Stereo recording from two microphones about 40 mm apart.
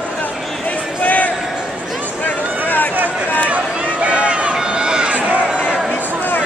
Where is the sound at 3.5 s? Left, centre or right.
Right.